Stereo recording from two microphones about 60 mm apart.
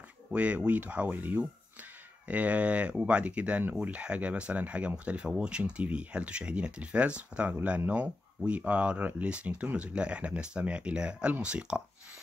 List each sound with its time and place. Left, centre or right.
0.3 s speech: right